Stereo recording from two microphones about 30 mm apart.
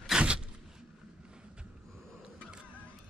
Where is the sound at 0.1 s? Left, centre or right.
Right.